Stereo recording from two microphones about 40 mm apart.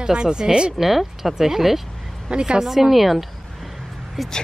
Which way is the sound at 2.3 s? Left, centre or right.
Right.